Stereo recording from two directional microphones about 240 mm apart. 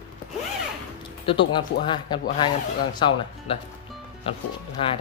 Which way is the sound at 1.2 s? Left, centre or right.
Left.